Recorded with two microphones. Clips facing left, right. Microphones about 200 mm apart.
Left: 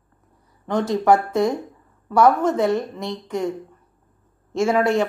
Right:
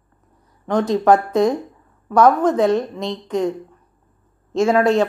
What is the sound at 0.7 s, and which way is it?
A woman's voice, 20° right (ahead or behind).